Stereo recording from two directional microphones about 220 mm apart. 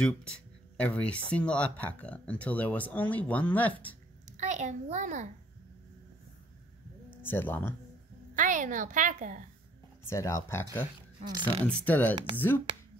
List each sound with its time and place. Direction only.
0.0 s speech: 5° left (ahead or behind)
4.4 s a child's voice: 30° right (ahead or behind)
7.2 s speech: 10° left (ahead or behind)
8.4 s a woman's voice: 35° right (ahead or behind)
10.0 s speech: 15° left (ahead or behind)
11.2 s speech: 20° right (ahead or behind)
11.6 s speech: 5° left (ahead or behind)